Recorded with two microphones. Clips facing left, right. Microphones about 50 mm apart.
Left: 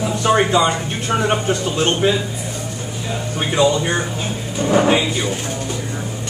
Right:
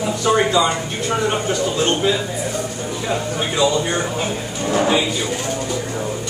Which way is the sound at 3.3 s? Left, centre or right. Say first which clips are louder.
Left 4 dB; left.